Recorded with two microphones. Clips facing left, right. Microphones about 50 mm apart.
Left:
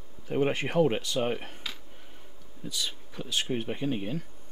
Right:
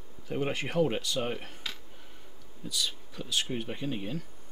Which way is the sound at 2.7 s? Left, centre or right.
Left.